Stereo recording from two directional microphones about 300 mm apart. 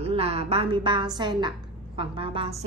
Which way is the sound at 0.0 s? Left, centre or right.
Centre.